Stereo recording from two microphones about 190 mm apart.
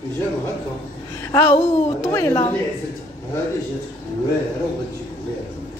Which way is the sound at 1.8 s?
15° left (ahead or behind).